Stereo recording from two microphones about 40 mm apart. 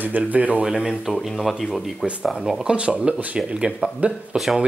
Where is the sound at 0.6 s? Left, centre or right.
Centre.